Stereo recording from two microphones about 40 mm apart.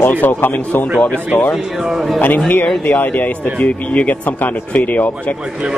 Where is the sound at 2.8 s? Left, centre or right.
Left.